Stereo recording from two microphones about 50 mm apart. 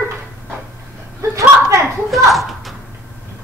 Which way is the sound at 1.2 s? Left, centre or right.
Right.